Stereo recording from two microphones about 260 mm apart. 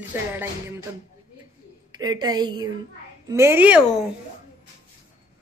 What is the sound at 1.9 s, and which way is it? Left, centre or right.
Speech, centre.